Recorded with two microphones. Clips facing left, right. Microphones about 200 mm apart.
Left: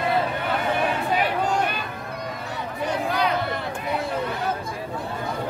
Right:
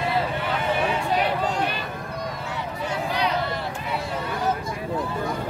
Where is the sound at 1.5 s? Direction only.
45° left (ahead or behind).